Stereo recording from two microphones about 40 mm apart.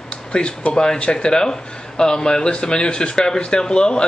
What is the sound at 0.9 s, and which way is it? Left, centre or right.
Speech, left.